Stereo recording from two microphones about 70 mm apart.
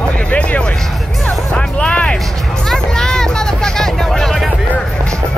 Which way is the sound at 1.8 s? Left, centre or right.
Centre.